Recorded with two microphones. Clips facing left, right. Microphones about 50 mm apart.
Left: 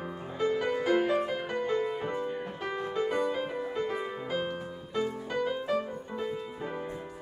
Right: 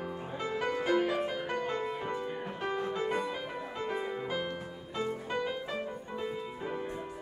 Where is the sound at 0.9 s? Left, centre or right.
Centre.